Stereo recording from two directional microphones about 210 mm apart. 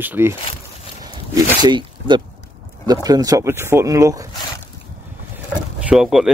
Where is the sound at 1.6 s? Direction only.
20° right (ahead or behind).